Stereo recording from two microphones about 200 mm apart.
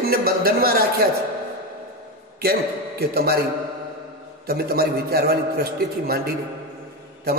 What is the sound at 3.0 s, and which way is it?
Speech, 50° right (ahead or behind).